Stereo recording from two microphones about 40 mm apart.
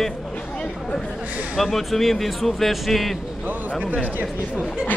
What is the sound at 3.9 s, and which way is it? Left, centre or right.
Speech, right.